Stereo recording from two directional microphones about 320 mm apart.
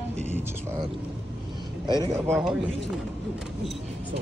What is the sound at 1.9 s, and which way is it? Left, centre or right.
Speech, centre.